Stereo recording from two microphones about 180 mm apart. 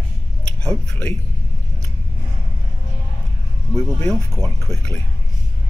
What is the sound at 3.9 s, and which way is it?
Speech, 5° left (ahead or behind).